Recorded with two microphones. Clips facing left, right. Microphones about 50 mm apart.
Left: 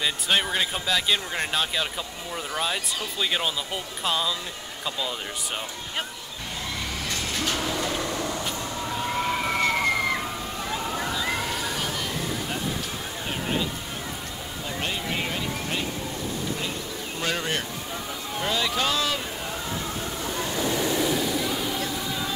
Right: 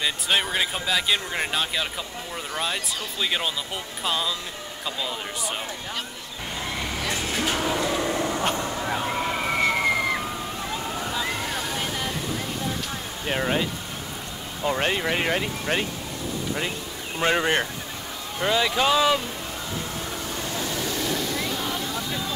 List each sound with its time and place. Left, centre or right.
0.0 s speech: centre
7.1 s train: centre
8.0 s vehicle: right
9.0 s slosh: centre
13.3 s a sound: right
14.7 s speech: right
17.2 s speech: right
18.4 s speech: centre
20.5 s a sound: left
21.1 s waves: centre